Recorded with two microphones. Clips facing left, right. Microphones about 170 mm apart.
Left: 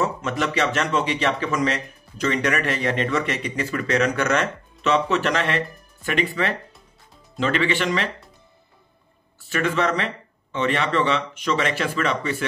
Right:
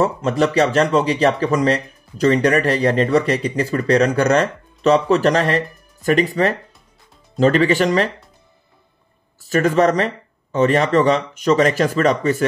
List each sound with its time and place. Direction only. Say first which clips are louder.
0.0 s speech: right 7 dB; 35° right (ahead or behind)
9.4 s speech: right 7 dB; 40° right (ahead or behind)